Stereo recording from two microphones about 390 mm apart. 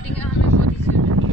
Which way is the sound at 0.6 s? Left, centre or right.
Right.